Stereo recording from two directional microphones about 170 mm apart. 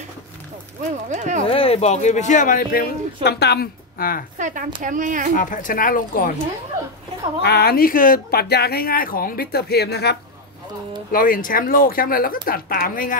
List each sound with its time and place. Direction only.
1.0 s speech: 45° right (ahead or behind)
1.4 s speech: 35° left (ahead or behind); by 4.2 s 65° left (ahead or behind)
4.4 s speech: 50° right (ahead or behind)
5.4 s speech: 50° left (ahead or behind)
7.4 s speech: 70° left (ahead or behind)
11.1 s speech: 55° left (ahead or behind)